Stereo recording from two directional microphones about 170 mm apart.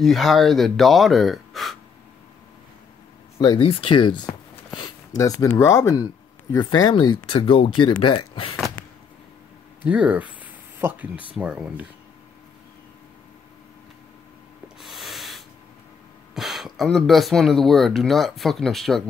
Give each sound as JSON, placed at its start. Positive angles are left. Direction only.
{"t": 0.0, "sound": "speech", "side_deg": 0}
{"t": 3.3, "sound": "speech", "side_deg": 25}
{"t": 9.8, "sound": "a sound", "side_deg": -10}
{"t": 11.3, "sound": "speech", "side_deg": -5}
{"t": 14.8, "sound": "a sound", "side_deg": 0}
{"t": 16.3, "sound": "speech", "side_deg": 0}